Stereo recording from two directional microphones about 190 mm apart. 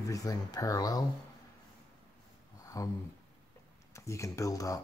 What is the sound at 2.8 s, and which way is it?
Speech, 15° left (ahead or behind).